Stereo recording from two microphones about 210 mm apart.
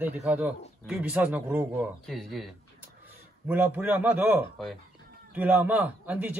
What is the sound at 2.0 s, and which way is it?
A man's voice, centre (ahead or behind).